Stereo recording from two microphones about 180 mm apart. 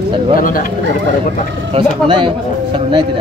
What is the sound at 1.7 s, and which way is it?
Speech, 30° right (ahead or behind).